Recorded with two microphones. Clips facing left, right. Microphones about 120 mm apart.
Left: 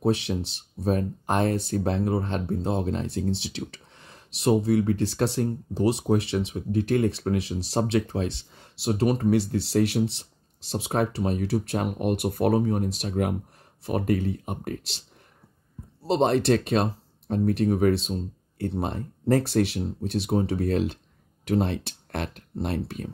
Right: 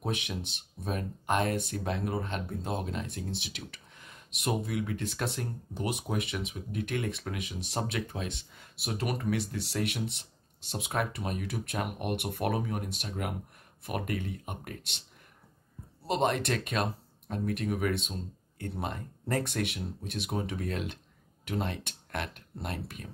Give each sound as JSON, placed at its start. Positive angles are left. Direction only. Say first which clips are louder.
{"t": 0.0, "sound": "speech", "louder": "left 10 dB", "side_deg": 35}
{"t": 16.1, "sound": "speech", "louder": "left 7 dB", "side_deg": 35}